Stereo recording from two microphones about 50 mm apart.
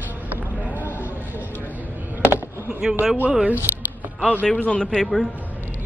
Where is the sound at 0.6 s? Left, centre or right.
Right.